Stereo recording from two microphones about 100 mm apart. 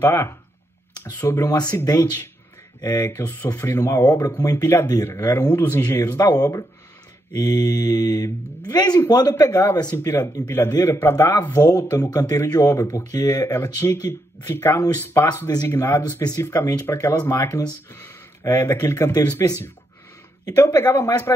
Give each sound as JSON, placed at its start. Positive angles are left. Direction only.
{"t": 0.0, "sound": "speech", "side_deg": 25}
{"t": 3.3, "sound": "speech", "side_deg": 40}
{"t": 4.8, "sound": "speech", "side_deg": 25}
{"t": 5.2, "sound": "speech", "side_deg": 40}
{"t": 9.3, "sound": "speech", "side_deg": 25}
{"t": 15.2, "sound": "speech", "side_deg": 40}
{"t": 20.8, "sound": "speech", "side_deg": 20}